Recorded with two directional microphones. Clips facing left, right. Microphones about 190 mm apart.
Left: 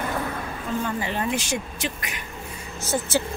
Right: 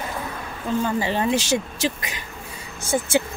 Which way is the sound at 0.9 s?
30° right (ahead or behind).